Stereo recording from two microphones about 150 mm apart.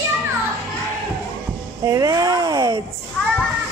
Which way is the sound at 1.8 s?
20° right (ahead or behind).